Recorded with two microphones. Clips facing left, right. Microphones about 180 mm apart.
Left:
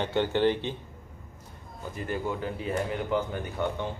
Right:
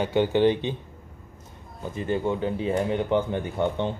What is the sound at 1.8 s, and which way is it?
Speech, 25° right (ahead or behind).